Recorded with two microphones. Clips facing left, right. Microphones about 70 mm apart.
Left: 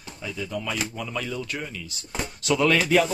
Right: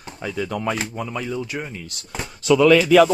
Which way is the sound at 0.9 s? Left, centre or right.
Centre.